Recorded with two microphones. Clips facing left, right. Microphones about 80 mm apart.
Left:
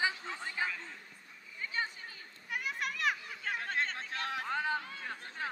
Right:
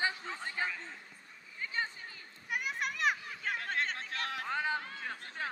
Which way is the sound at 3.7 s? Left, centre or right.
Left.